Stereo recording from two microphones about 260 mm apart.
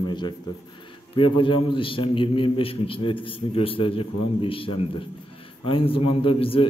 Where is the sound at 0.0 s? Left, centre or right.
Centre.